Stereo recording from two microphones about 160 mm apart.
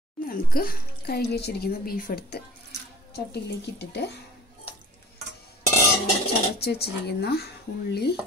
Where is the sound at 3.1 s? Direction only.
85° left.